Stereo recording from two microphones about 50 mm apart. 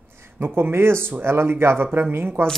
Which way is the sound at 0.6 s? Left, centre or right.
Right.